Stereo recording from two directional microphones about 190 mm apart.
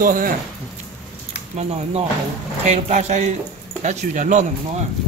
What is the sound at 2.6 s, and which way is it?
Speech, 35° right (ahead or behind).